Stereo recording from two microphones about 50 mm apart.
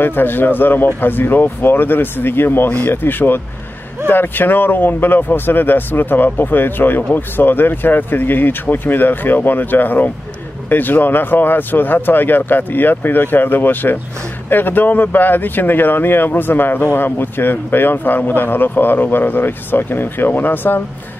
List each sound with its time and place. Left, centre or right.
0.0 s speech: left